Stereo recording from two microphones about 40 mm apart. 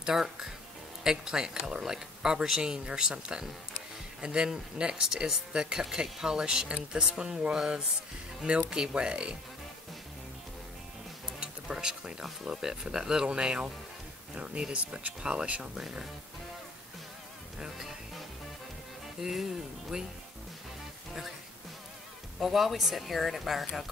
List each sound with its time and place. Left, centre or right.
0.0 s speech: centre
11.2 s speech: centre
13.1 s speech: right
15.7 s speech: centre
17.6 s speech: centre
19.2 s speech: centre
22.4 s speech: centre